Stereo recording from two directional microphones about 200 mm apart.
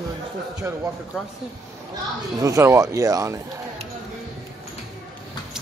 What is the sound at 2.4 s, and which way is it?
Speech, 15° right (ahead or behind).